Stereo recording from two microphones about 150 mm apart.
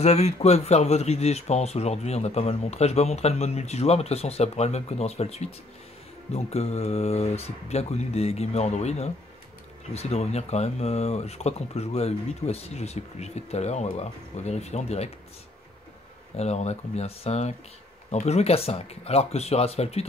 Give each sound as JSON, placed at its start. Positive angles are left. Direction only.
{"t": 0.0, "sound": "speech", "side_deg": 45}
{"t": 16.3, "sound": "speech", "side_deg": 45}